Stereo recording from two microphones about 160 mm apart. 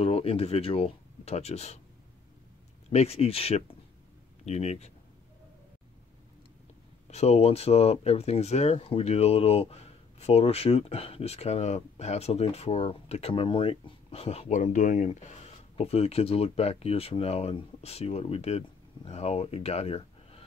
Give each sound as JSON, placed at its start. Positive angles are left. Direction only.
{"t": 0.0, "sound": "speech", "side_deg": 40}
{"t": 2.9, "sound": "speech", "side_deg": 40}
{"t": 7.1, "sound": "speech", "side_deg": 40}
{"t": 14.5, "sound": "speech", "side_deg": 50}